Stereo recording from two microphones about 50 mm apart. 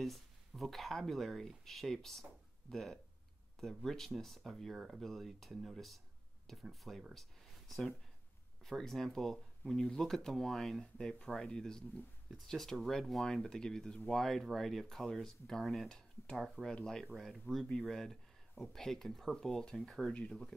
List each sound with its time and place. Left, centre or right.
0.0 s speech: centre
7.2 s a sound: centre
8.6 s speech: centre
12.4 s speech: centre
14.1 s speech: centre